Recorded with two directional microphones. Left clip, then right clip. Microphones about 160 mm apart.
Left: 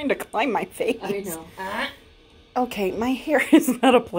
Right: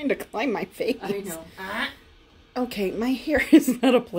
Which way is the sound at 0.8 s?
20° right (ahead or behind).